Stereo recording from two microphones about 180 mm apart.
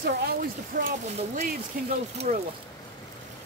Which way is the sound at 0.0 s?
60° right (ahead or behind).